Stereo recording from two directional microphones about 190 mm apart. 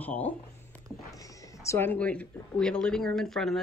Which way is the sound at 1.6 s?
15° left (ahead or behind).